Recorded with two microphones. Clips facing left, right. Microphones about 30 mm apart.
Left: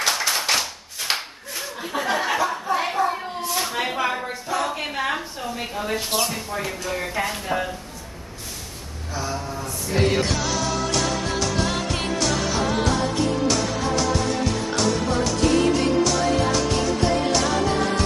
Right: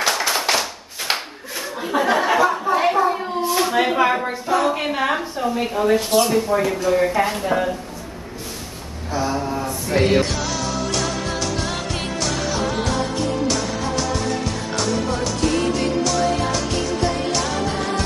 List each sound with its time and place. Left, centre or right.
0.1 s clapping: centre
1.8 s a sound: centre
4.6 s a woman's voice: centre
9.1 s mantra: right
9.9 s a woman's voice: centre
10.2 s music: centre